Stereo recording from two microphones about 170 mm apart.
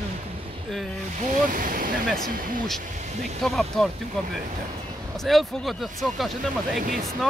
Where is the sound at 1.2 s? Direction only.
50° right (ahead or behind).